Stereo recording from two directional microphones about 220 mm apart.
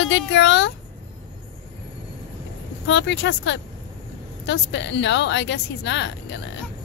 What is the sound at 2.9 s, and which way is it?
A woman's voice, 55° left (ahead or behind).